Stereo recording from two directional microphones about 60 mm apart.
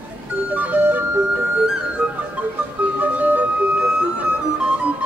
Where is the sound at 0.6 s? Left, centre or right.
Right.